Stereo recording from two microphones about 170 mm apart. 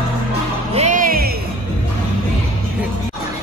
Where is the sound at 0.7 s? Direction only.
45° right (ahead or behind).